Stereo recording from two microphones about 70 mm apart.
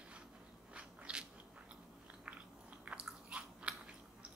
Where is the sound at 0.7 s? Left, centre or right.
Centre.